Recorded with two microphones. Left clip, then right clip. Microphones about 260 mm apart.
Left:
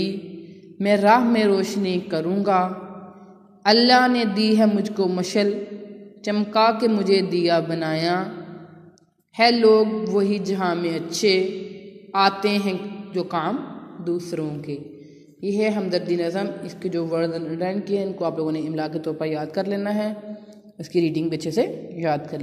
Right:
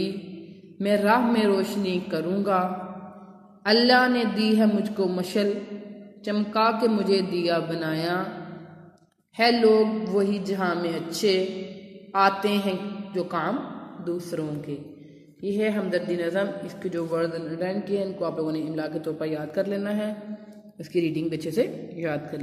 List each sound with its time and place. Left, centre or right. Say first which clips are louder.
0.7 s a man's voice: left 5 dB; left
9.4 s a man's voice: left 4 dB; left
15.5 s a man's voice: left 3 dB; left